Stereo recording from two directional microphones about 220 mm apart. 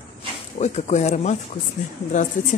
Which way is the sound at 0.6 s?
30° left (ahead or behind).